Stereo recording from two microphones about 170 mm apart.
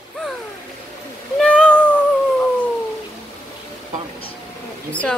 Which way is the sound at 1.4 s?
5° left (ahead or behind).